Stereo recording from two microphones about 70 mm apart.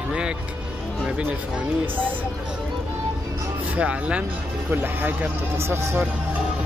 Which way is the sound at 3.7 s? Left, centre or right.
Centre.